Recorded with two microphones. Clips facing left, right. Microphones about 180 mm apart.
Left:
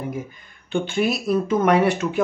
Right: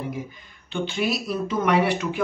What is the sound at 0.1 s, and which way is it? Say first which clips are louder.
Speech: left 2 dB; 50° left (ahead or behind).